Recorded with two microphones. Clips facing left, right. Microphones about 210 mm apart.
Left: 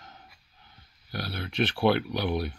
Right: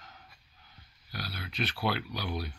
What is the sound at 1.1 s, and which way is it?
Speech, 55° left (ahead or behind).